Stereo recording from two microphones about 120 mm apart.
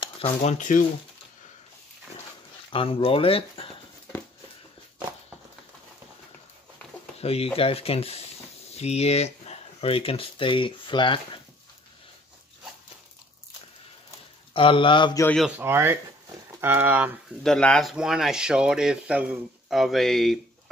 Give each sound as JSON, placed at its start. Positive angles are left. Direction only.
{"t": 0.0, "sound": "speech", "side_deg": 60}
{"t": 2.7, "sound": "speech", "side_deg": 50}
{"t": 7.2, "sound": "speech", "side_deg": 55}
{"t": 14.5, "sound": "speech", "side_deg": 45}
{"t": 15.5, "sound": "speech", "side_deg": -20}
{"t": 17.4, "sound": "speech", "side_deg": 5}
{"t": 17.9, "sound": "speech", "side_deg": -5}